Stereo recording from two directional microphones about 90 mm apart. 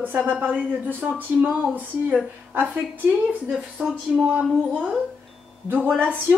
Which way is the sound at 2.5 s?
20° right (ahead or behind).